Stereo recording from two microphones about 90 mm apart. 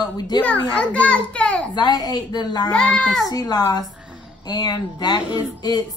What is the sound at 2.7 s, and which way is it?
Speech, 10° left (ahead or behind).